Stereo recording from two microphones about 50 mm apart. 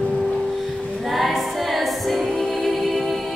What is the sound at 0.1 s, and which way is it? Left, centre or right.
Music, centre.